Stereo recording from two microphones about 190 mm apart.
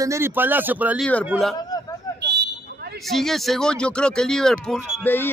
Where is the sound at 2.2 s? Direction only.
60° right (ahead or behind).